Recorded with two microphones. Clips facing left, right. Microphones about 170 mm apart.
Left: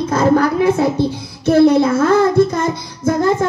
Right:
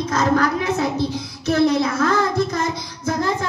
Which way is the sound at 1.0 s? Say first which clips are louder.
Left 5 dB; 55° left (ahead or behind).